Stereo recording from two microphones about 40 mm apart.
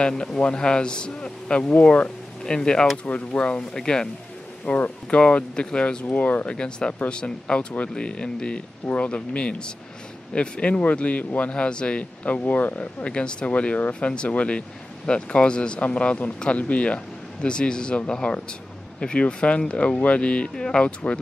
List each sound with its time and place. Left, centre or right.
0.2 s speech: left
2.4 s speech: left
4.7 s speech: left
5.2 s speech: left
6.1 s speech: left
6.5 s speech: left
13.0 s speech: left
20.5 s speech: centre
20.8 s speech: left